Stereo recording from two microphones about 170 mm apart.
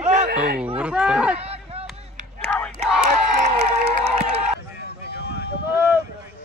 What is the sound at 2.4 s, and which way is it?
Crowd, 10° left (ahead or behind).